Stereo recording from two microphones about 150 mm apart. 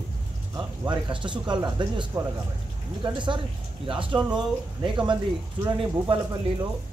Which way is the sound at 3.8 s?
35° right (ahead or behind).